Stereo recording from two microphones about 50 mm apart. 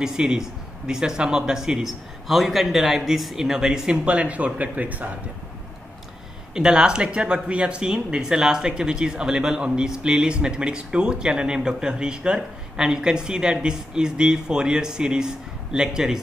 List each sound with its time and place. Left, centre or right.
0.0 s speech: centre; by 5.1 s right
6.5 s speech: centre